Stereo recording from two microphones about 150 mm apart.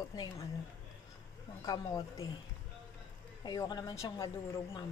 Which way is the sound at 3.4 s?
25° left (ahead or behind).